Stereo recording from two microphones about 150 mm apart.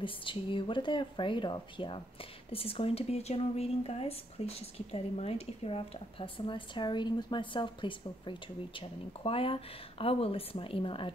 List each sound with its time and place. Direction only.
0.0 s speech: 35° left (ahead or behind)